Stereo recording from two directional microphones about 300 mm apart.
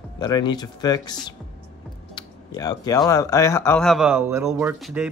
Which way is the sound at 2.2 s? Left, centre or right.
Centre.